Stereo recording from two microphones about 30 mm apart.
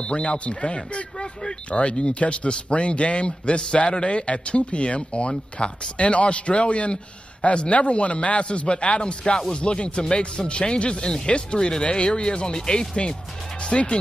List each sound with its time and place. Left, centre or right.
0.0 s speech: left
1.1 s a sound: left
1.7 s a man's voice: left
9.0 s speech: left
13.6 s speech: left